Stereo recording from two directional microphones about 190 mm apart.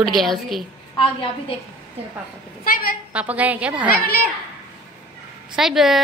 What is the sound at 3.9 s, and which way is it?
Speech, 50° left (ahead or behind).